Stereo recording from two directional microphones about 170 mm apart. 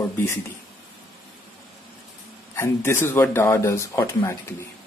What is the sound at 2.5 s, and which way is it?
Speech, 15° left (ahead or behind).